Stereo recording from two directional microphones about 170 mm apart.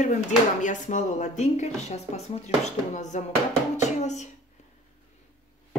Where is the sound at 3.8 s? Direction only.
45° left (ahead or behind).